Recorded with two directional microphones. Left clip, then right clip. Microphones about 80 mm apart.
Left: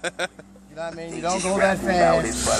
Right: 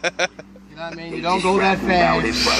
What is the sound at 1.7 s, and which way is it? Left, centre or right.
Speech, left.